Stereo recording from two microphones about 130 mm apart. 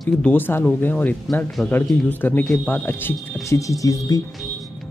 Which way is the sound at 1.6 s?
Centre (ahead or behind).